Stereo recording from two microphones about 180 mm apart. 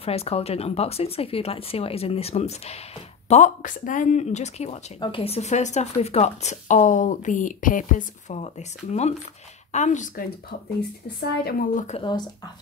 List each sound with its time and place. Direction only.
0.0 s a woman's voice: 35° left (ahead or behind)
11.1 s speech: 55° left (ahead or behind)
12.0 s speech: 25° left (ahead or behind)